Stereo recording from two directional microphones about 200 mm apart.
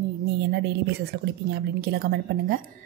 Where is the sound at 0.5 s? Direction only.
60° right (ahead or behind).